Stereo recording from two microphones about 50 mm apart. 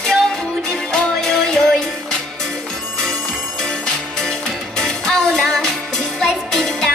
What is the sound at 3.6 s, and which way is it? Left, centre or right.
Music, centre.